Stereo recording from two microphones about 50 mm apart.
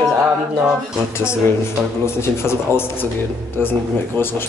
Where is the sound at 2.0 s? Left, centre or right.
Left.